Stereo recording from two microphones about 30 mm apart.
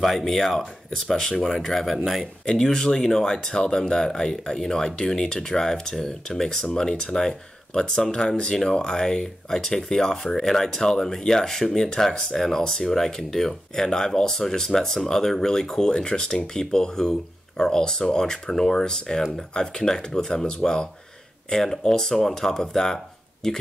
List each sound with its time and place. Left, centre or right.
0.0 s speech: centre
0.3 s speech: centre
2.4 s speech: left